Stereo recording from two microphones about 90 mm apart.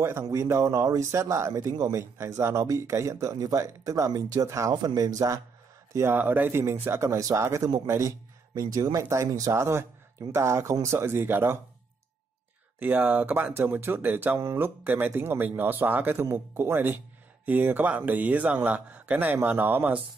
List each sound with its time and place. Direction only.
0.0 s speech: 30° right (ahead or behind)
5.9 s speech: 25° right (ahead or behind)
12.7 s speech: 20° right (ahead or behind)